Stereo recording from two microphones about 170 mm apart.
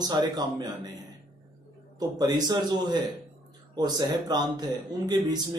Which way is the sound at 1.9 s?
25° right (ahead or behind).